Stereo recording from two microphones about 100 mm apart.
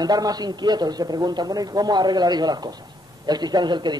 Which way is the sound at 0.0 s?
40° right (ahead or behind).